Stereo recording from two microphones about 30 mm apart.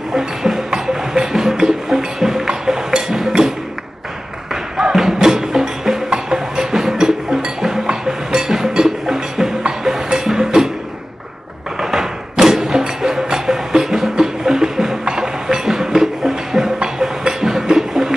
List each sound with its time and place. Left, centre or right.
0.4 s music: centre
4.9 s music: centre
11.8 s music: centre